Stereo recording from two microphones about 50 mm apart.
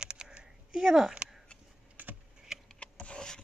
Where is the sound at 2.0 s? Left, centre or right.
Right.